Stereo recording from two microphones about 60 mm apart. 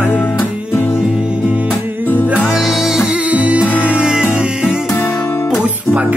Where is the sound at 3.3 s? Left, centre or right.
Right.